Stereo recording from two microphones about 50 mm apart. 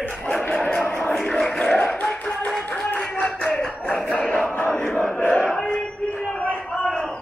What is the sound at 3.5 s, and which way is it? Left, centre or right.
Music, centre.